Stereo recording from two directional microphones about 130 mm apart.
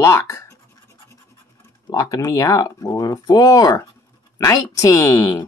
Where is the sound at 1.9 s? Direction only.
30° left (ahead or behind).